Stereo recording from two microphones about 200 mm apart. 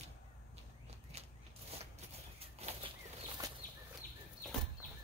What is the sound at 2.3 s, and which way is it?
Bird flight, 30° right (ahead or behind).